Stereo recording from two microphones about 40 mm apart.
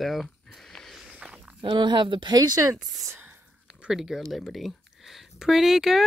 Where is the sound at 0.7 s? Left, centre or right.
Centre.